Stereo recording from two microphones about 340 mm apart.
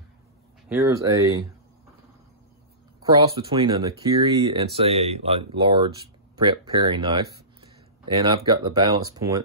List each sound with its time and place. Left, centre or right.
0.7 s speech: centre
3.3 s speech: centre